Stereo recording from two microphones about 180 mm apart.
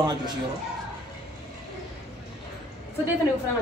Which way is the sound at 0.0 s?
20° right (ahead or behind).